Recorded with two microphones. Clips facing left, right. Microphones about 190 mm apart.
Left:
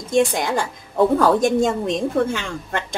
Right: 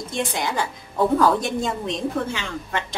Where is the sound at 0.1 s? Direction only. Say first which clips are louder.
Left 8 dB; 50° left (ahead or behind).